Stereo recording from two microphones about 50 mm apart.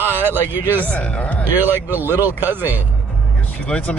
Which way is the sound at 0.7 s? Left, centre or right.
Left.